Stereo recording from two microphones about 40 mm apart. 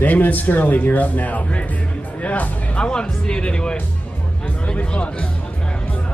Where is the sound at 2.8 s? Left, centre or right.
Left.